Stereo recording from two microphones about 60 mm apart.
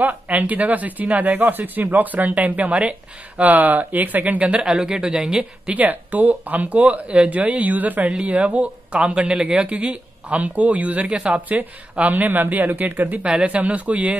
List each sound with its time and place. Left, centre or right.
0.0 s speech: right
5.9 s speech: right
13.2 s speech: centre